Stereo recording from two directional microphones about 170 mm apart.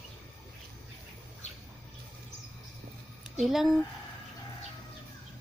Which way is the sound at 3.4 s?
Centre (ahead or behind).